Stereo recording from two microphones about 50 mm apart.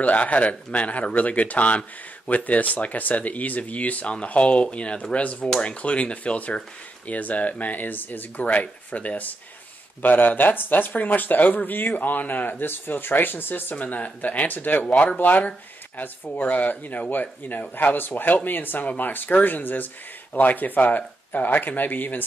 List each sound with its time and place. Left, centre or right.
0.0 s speech: left